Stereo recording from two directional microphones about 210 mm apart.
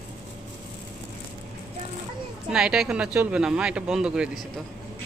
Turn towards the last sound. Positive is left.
turn(degrees=-5)  # may be behind; listen again after turning